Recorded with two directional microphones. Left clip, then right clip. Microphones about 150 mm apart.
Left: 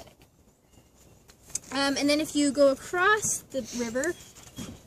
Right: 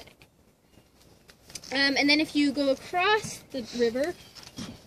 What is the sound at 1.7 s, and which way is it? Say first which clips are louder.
Speech: right 3 dB; 30° left (ahead or behind).